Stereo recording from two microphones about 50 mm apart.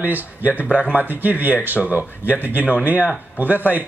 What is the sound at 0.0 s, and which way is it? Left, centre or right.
Speech, right.